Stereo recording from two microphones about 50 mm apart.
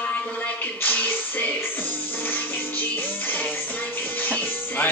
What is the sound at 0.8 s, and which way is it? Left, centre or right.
Music, left.